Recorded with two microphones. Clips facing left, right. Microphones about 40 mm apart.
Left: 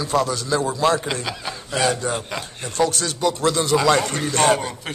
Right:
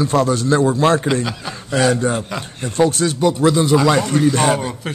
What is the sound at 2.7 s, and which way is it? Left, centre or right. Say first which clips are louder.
A man's voice: right 5 dB; right.